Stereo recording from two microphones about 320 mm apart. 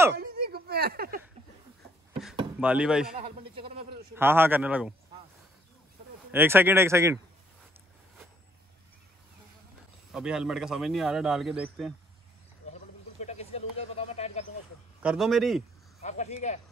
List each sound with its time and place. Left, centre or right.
0.1 s a sound: right
2.6 s speech: centre
3.2 s a sound: centre
4.1 s speech: centre
6.3 s speech: centre
10.1 s speech: centre
12.6 s a sound: left
15.0 s speech: centre
16.0 s speech: left